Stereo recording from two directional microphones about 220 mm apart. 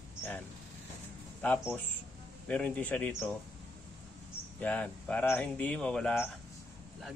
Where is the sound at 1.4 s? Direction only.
5° left (ahead or behind).